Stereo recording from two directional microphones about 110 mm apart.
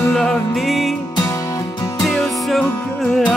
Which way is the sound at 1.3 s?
30° left (ahead or behind).